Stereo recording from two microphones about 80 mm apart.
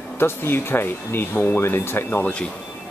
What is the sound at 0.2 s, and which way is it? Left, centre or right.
Speech, left.